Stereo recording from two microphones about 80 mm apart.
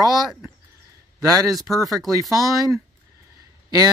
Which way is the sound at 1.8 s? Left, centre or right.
Right.